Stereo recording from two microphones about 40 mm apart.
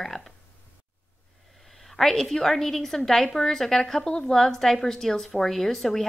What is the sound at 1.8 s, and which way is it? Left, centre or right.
Speech, centre.